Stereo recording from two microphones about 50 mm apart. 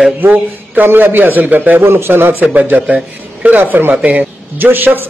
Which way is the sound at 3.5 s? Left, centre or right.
Right.